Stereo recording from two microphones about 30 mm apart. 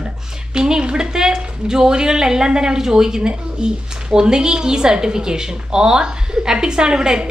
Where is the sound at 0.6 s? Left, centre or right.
Right.